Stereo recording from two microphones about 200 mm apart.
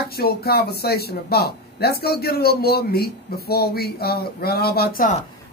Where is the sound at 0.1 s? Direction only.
50° left (ahead or behind).